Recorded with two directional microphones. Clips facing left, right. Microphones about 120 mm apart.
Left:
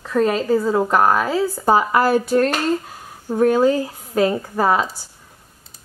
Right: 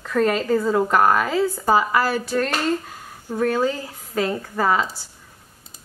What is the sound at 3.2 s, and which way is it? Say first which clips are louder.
Speech: left 6 dB; 20° left (ahead or behind).